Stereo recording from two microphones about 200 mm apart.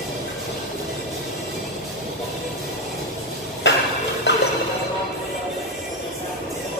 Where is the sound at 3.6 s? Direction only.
60° left (ahead or behind).